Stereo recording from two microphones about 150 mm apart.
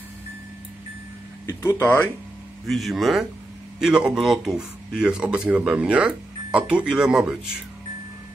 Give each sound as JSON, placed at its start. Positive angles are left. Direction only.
{"t": 1.4, "sound": "speech", "side_deg": 20}
{"t": 2.6, "sound": "speech", "side_deg": 0}